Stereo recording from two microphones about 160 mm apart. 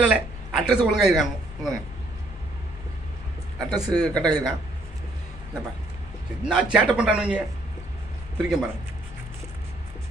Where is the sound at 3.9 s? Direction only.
25° right (ahead or behind).